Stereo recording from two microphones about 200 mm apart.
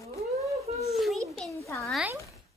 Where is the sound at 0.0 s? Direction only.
15° left (ahead or behind).